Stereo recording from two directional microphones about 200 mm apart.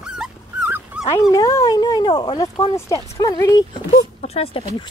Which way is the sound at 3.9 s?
30° left (ahead or behind).